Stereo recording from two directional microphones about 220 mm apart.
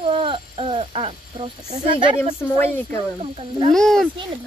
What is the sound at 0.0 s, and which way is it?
Speech, 25° right (ahead or behind).